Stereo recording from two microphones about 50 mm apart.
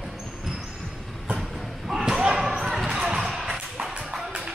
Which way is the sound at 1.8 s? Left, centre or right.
Centre.